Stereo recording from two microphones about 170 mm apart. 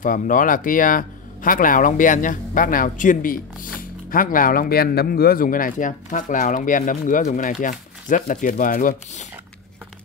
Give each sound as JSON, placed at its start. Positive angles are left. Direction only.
{"t": 0.0, "sound": "speech", "side_deg": 50}